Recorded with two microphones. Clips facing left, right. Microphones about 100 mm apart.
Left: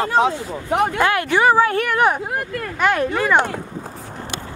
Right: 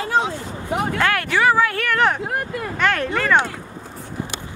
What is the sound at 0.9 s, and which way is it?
Speech, 20° left (ahead or behind).